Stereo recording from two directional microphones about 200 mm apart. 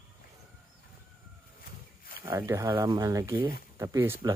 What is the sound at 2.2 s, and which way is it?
Speech, 15° right (ahead or behind).